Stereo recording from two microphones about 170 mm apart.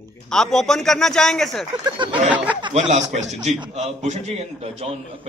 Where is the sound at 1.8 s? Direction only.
30° right (ahead or behind).